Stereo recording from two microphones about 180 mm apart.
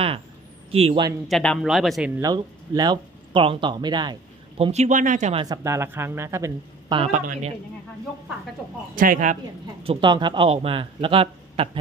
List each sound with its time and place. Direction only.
0.7 s a man's voice: 30° right (ahead or behind)
1.3 s speech: 5° left (ahead or behind)
2.2 s speech: 20° right (ahead or behind); by 5.4 s 40° right (ahead or behind)
5.4 s speech: 20° right (ahead or behind)
7.1 s speech: 40° right (ahead or behind)
8.9 s speech: 50° right (ahead or behind)
9.8 s a man's voice: 25° right (ahead or behind)